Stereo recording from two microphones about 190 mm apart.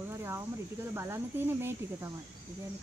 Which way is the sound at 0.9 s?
15° right (ahead or behind).